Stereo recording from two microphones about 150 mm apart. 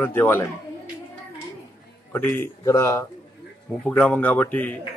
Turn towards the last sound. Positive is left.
turn(degrees=10)  # may be behind; listen again after turning